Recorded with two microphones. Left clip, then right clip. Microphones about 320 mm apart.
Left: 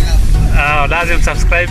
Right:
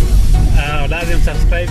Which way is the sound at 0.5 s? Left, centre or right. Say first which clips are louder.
Left 8 dB; left.